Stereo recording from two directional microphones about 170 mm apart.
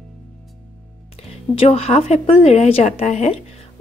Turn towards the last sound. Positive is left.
turn(degrees=40)  # may be behind; listen again after turning